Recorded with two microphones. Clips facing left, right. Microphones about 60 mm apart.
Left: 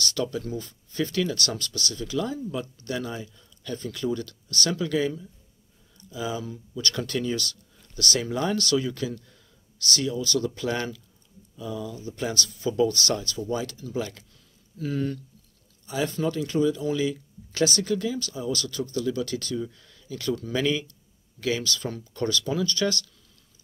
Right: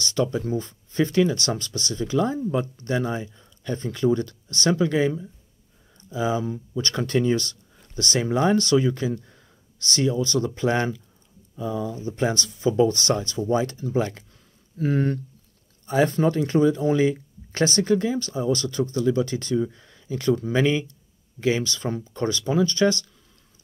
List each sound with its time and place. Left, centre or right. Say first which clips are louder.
0.0 s speech: right 4 dB; right